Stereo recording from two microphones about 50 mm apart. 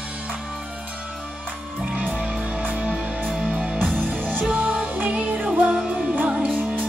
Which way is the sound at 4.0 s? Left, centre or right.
Right.